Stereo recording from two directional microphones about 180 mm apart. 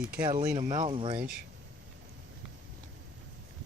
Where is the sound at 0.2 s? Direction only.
25° right (ahead or behind).